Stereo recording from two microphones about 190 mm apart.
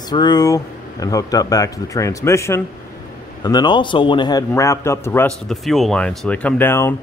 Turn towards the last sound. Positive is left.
turn(degrees=10)  # may be behind; listen again after turning